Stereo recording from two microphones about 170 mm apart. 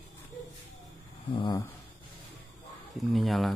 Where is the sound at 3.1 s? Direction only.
Centre (ahead or behind).